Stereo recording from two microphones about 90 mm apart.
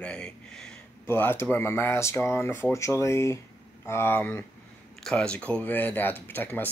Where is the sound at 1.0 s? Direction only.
25° left (ahead or behind).